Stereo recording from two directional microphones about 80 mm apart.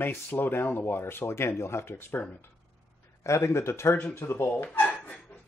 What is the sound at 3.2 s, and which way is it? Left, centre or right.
Speech, left.